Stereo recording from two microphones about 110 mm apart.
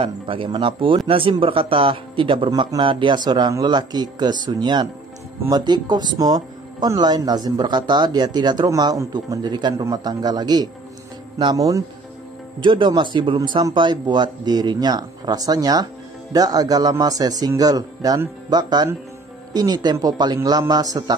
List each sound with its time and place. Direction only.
0.0 s speech: 50° right (ahead or behind); by 11.8 s 30° right (ahead or behind)
12.5 s speech: 45° right (ahead or behind)